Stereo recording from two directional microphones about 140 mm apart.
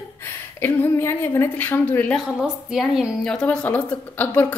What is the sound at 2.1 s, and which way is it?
A woman's voice, 5° right (ahead or behind).